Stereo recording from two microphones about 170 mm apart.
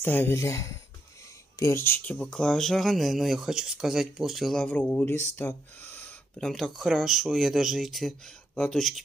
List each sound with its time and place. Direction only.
0.0 s speech: 15° left (ahead or behind)